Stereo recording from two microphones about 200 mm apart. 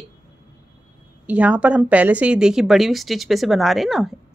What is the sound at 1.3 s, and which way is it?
A woman's voice, 5° right (ahead or behind).